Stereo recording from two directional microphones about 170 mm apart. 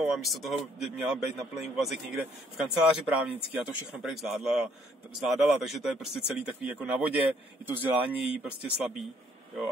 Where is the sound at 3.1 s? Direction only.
5° right (ahead or behind).